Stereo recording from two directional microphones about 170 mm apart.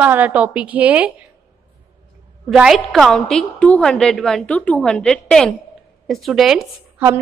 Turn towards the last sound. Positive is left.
turn(degrees=-15)  # may be behind; listen again after turning